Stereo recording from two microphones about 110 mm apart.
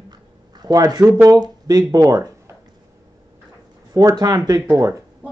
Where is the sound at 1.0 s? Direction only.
15° right (ahead or behind).